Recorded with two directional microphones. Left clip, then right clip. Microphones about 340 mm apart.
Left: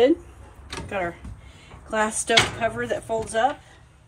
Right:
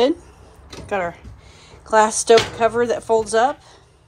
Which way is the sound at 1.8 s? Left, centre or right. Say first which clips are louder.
Right 10 dB; centre.